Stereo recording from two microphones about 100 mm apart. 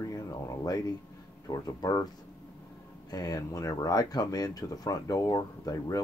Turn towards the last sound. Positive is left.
turn(degrees=35)  # may be behind; listen again after turning